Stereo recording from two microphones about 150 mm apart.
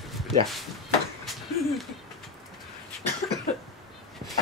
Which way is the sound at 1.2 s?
Centre (ahead or behind).